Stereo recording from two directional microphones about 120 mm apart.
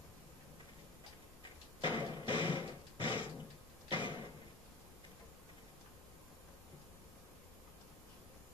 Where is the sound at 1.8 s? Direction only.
40° left (ahead or behind).